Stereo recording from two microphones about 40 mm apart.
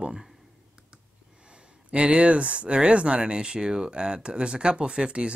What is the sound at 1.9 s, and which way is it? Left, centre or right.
Speech, right.